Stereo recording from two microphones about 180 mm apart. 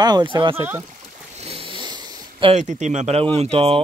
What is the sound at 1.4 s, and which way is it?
Snoring, 30° right (ahead or behind).